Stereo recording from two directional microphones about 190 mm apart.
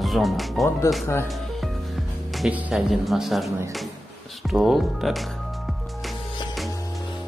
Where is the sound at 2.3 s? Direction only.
Centre (ahead or behind).